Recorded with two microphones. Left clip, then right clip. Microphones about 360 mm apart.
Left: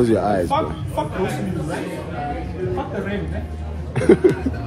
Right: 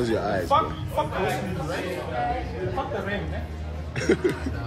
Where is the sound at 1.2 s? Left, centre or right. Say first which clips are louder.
Left 2 dB; right.